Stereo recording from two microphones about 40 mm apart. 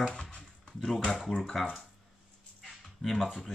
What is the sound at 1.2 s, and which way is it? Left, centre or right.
Speech, centre.